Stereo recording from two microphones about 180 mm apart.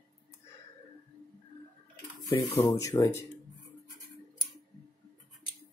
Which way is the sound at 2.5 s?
20° left (ahead or behind).